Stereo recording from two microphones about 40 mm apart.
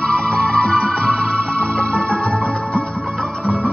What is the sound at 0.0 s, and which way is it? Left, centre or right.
Music, centre.